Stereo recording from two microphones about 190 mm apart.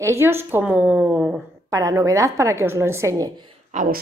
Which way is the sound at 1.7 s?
15° right (ahead or behind).